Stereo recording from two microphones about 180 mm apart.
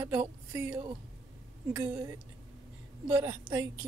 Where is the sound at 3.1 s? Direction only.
15° right (ahead or behind).